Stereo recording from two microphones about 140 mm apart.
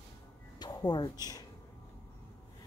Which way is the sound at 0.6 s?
30° left (ahead or behind).